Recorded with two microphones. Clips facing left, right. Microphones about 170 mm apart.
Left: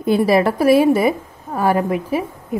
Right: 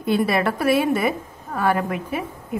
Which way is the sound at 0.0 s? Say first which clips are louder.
Left 5 dB; 35° left (ahead or behind).